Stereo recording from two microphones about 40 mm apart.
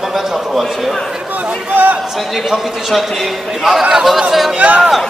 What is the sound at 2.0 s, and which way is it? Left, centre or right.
A man's voice, centre.